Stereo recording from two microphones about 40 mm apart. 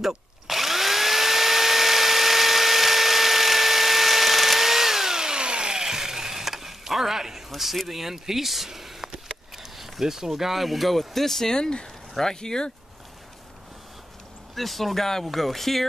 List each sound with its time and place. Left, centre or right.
0.0 s drill: centre
7.9 s speech: centre
14.5 s speech: centre